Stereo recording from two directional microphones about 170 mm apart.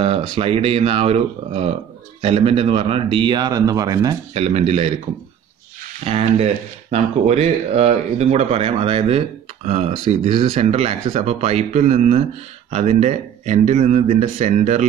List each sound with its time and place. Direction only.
0.0 s a man's voice: 35° right (ahead or behind)
4.3 s speech: 40° right (ahead or behind)
6.0 s speech: 35° right (ahead or behind)